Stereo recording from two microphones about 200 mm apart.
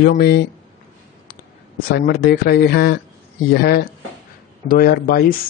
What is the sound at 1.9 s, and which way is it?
Speech, 50° left (ahead or behind).